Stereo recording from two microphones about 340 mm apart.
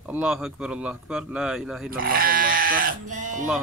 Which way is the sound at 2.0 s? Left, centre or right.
Right.